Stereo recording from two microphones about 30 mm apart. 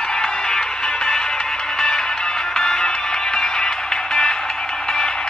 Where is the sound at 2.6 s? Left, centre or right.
Left.